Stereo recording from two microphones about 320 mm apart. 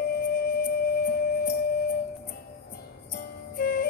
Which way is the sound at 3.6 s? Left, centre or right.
Left.